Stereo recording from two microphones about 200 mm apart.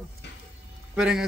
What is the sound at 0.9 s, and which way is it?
Speech, 5° right (ahead or behind).